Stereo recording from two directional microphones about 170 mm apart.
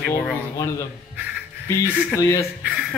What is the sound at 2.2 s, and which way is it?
Speech, 20° left (ahead or behind).